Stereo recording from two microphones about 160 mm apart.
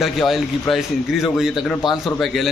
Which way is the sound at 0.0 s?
Centre (ahead or behind).